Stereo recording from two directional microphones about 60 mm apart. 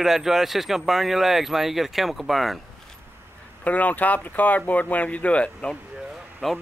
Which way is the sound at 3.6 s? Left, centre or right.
Left.